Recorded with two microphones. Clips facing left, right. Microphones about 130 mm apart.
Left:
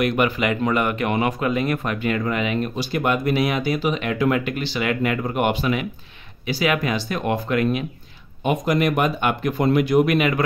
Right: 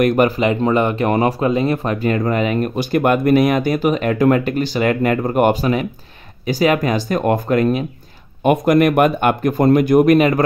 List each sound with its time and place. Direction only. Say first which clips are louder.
0.0 s speech: right 6 dB; 45° right (ahead or behind)
0.4 s speech: right 5 dB; 30° right (ahead or behind)
8.5 s speech: right 7 dB; 55° right (ahead or behind)